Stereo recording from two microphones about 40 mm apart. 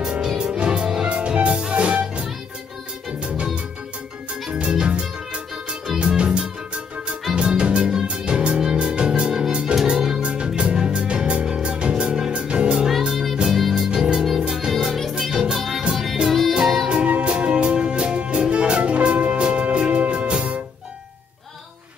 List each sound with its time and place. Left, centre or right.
0.1 s music: centre
4.5 s music: right
9.8 s music: centre
10.2 s music: right
13.1 s music: centre
13.7 s music: right
14.9 s music: centre
15.3 s music: centre
15.9 s music: centre
17.1 s music: right